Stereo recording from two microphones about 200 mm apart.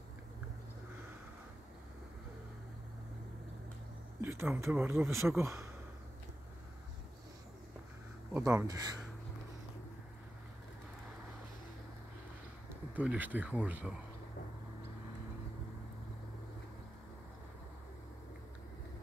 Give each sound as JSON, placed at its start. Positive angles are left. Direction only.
{"t": 4.2, "sound": "speech", "side_deg": -10}
{"t": 8.3, "sound": "speech", "side_deg": -15}
{"t": 12.9, "sound": "speech", "side_deg": -5}